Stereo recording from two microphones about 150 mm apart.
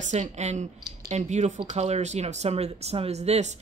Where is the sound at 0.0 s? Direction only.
50° right (ahead or behind).